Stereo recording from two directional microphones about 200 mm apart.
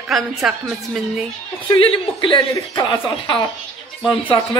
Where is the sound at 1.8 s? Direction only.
25° left (ahead or behind).